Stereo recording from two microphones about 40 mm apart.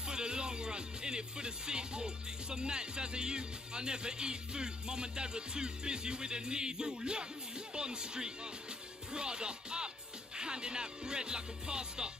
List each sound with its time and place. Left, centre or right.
0.0 s speech: right